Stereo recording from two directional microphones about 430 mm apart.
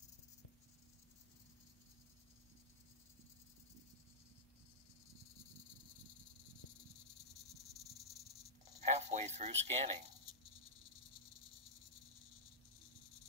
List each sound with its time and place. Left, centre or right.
8.8 s speech: centre